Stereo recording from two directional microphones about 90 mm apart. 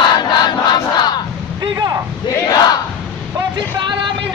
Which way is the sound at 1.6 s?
50° right (ahead or behind).